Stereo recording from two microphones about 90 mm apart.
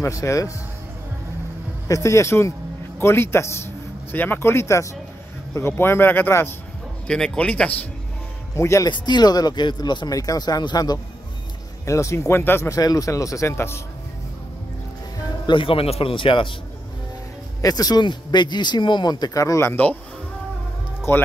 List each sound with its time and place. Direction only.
0.0 s speech: 35° left (ahead or behind)
1.9 s a man's voice: 35° left (ahead or behind)
7.1 s a man's voice: 10° left (ahead or behind)
8.5 s speech: 35° left (ahead or behind)
8.8 s speech: 55° left (ahead or behind)
11.8 s speech: 35° left (ahead or behind)
12.7 s speech: 40° left (ahead or behind)
15.4 s speech: 75° left (ahead or behind)
17.6 s speech: 45° left (ahead or behind)
19.6 s a man's voice: 20° left (ahead or behind)
21.1 s a man's voice: 25° left (ahead or behind)